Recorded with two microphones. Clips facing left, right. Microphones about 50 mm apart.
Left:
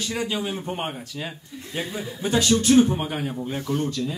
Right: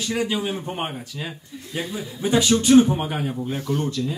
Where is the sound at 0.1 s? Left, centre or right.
Centre.